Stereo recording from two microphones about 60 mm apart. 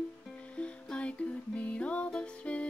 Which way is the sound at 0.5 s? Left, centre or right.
Centre.